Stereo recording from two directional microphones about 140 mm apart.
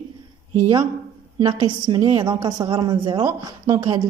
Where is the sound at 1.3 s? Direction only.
30° right (ahead or behind).